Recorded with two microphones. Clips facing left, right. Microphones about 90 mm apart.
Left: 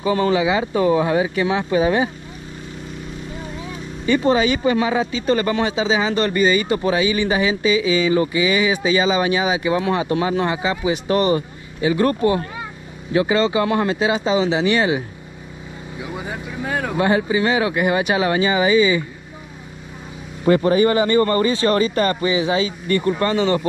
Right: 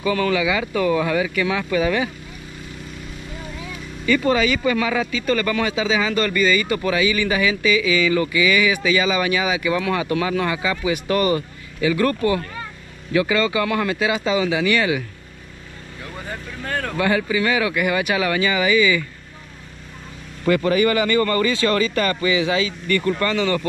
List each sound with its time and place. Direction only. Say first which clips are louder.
0.0 s speech: left 2 dB; 25° left (ahead or behind)
4.0 s speech: left 2 dB; 25° left (ahead or behind)
16.0 s vehicle: left 4 dB; 10° left (ahead or behind)
16.9 s speech: left 2 dB; 25° left (ahead or behind)
20.4 s speech: left 3 dB; 30° left (ahead or behind)